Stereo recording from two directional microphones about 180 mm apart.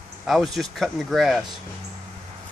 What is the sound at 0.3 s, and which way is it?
Speech, centre (ahead or behind).